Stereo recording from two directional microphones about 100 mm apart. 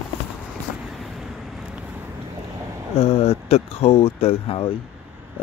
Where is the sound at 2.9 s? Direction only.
85° left.